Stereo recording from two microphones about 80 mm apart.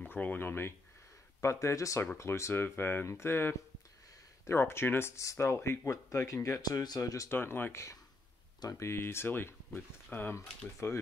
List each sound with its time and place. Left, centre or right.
0.0 s speech: left
6.6 s speech: left
7.2 s speech: left